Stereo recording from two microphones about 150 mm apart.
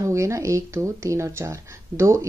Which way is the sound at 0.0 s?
20° right (ahead or behind).